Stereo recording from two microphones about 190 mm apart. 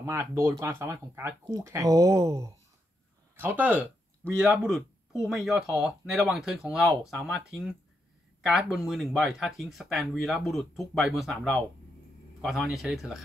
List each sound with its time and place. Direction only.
0.0 s speech: 15° right (ahead or behind)